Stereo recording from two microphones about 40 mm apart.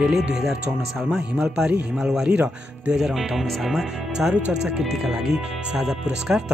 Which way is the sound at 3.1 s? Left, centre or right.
Centre.